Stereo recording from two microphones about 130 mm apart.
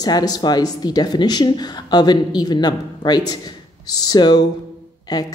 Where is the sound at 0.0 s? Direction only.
30° left (ahead or behind).